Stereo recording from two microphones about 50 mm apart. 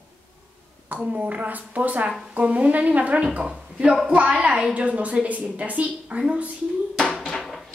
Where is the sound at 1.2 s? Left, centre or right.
Right.